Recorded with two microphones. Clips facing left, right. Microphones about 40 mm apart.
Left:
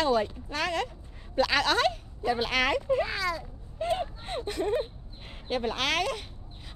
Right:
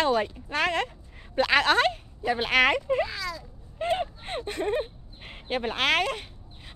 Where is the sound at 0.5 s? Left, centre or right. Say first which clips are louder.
Right 4 dB; right.